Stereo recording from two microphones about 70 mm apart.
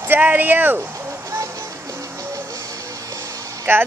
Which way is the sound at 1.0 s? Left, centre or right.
Right.